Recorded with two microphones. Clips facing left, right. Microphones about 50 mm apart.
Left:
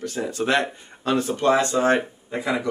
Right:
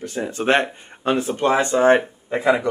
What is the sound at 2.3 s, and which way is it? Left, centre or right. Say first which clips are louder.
Speech: right 8 dB; right.